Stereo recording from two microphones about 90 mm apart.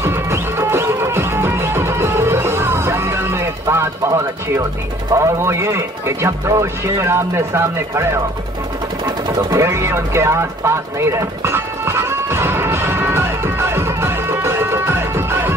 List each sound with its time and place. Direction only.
0.0 s music: 30° right (ahead or behind)
5.1 s speech: 35° right (ahead or behind)
9.0 s sewing machine: 45° right (ahead or behind)
9.6 s music: 30° right (ahead or behind)